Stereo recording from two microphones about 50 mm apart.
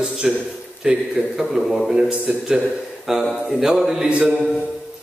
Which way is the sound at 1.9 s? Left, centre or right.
Centre.